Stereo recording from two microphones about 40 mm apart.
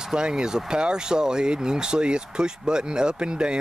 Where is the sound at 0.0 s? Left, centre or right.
Centre.